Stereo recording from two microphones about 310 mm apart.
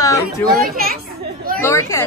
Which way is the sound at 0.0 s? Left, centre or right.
Centre.